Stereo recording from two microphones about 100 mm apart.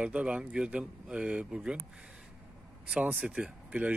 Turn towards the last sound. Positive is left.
turn(degrees=-15)  # may be behind; listen again after turning